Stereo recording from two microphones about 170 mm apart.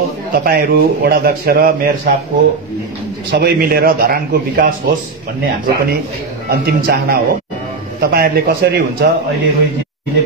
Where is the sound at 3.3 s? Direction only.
75° right (ahead or behind).